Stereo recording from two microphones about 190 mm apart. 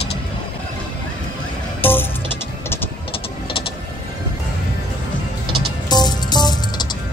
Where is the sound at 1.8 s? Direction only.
10° left (ahead or behind).